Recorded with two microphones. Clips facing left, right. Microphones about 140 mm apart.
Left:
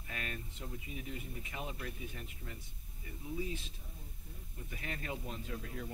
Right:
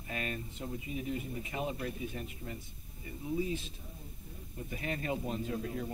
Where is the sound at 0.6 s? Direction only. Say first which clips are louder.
Right 8 dB; 25° right (ahead or behind).